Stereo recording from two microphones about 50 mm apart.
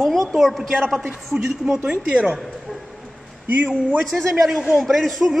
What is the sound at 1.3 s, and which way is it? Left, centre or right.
Speech, centre.